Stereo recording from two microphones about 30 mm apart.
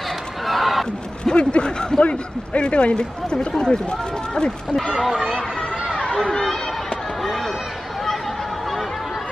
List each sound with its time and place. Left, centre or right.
0.5 s a sound: centre
1.2 s speech: left
2.0 s a man's voice: left
5.1 s speech: centre